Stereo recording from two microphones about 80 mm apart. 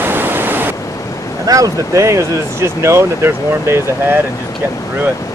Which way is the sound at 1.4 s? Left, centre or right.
Right.